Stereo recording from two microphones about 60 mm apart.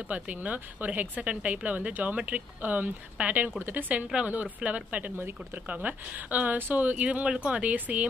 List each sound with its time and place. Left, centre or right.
0.1 s speech: right
4.1 s speech: right
5.1 s speech: right